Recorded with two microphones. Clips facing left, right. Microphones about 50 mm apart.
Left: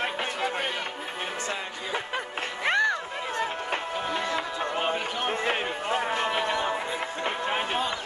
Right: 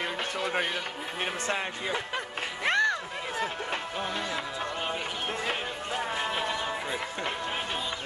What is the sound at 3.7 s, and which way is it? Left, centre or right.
Music, left.